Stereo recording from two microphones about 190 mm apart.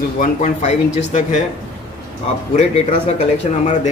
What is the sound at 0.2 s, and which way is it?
Speech, 40° left (ahead or behind).